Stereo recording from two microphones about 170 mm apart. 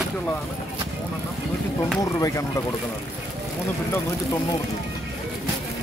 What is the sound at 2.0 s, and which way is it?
Speech, 20° left (ahead or behind).